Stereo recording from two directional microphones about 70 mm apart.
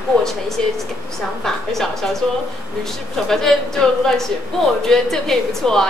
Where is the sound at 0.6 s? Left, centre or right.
Centre.